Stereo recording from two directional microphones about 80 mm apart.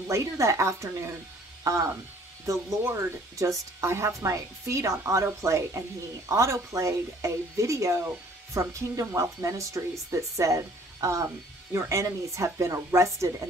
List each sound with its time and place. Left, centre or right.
0.1 s a woman's voice: right